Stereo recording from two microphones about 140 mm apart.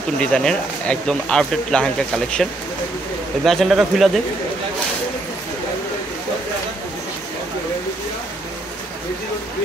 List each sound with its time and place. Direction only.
0.2 s speech: 5° left (ahead or behind)
3.4 s speech: centre (ahead or behind)